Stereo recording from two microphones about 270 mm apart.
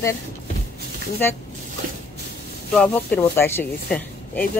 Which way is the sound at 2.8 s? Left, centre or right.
Centre.